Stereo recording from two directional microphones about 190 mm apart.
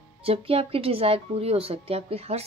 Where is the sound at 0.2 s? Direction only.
30° right (ahead or behind).